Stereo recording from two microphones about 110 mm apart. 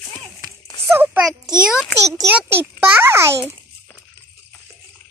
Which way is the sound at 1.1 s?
5° right (ahead or behind).